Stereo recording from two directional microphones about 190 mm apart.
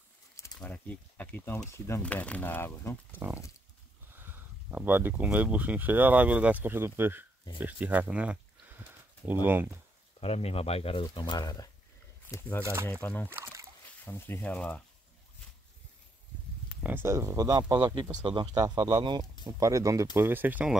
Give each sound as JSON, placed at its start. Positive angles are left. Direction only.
{"t": 0.6, "sound": "speech", "side_deg": 10}
{"t": 3.2, "sound": "speech", "side_deg": -10}
{"t": 10.2, "sound": "speech", "side_deg": 30}
{"t": 13.3, "sound": "speech", "side_deg": -15}
{"t": 14.0, "sound": "speech", "side_deg": 10}
{"t": 16.8, "sound": "speech", "side_deg": -10}